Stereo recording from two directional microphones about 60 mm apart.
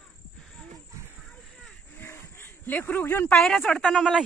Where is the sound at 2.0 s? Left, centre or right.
Left.